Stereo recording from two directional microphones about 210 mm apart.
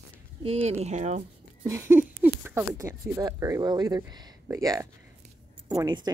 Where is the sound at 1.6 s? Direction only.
10° right (ahead or behind).